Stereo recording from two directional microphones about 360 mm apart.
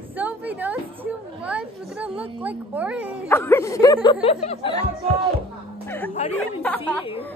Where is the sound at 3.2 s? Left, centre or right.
Centre.